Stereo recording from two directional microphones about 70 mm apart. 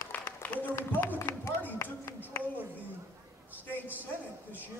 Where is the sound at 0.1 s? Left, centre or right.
Left.